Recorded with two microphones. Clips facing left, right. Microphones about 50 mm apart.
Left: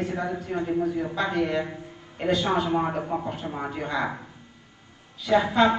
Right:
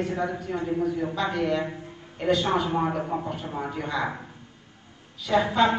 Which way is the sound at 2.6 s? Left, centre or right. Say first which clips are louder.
Even; centre.